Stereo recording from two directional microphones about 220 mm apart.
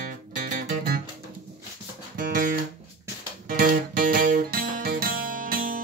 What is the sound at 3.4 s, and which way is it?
Music, 40° right (ahead or behind).